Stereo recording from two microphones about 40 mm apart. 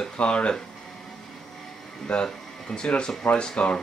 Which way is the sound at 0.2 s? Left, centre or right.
Left.